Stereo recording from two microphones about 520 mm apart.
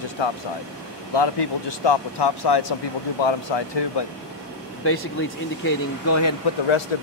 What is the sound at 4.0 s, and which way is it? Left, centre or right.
Speech, left.